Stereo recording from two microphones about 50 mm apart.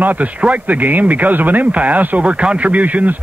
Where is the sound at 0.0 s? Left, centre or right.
Right.